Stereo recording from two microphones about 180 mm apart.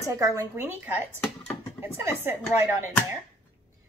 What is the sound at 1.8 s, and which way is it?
A woman's voice, 15° right (ahead or behind).